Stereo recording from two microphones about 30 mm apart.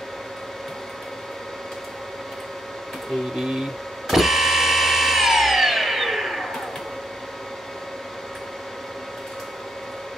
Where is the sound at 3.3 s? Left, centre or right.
Centre.